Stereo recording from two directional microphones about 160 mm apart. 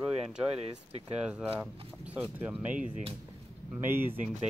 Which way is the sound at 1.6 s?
10° right (ahead or behind).